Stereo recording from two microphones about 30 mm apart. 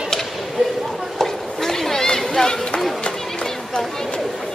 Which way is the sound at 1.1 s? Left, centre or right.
Centre.